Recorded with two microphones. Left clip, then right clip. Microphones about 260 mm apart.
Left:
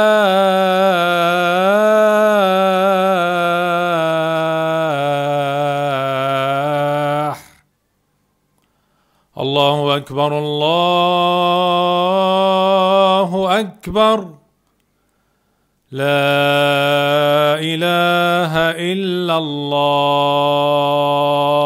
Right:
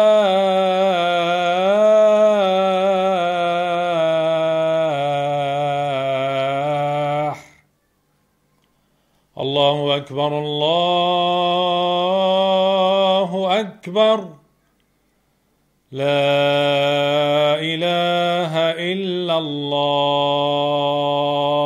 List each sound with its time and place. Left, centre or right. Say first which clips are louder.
0.0 s music: left 2 dB; left
9.3 s mantra: left 2 dB; left
15.9 s mantra: left 2 dB; left